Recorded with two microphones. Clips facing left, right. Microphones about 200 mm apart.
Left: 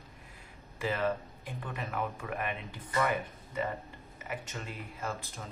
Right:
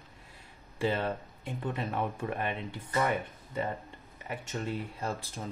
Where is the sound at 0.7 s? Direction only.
30° right (ahead or behind).